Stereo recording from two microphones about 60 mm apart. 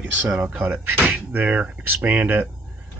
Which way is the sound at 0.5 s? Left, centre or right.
Right.